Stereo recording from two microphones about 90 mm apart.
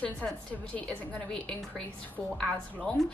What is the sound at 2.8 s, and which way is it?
Speech, 5° left (ahead or behind).